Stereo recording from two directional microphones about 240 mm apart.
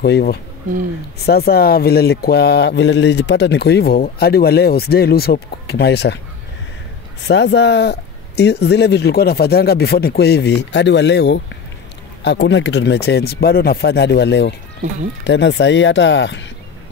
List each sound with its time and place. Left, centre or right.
0.0 s speech: left
7.2 s speech: left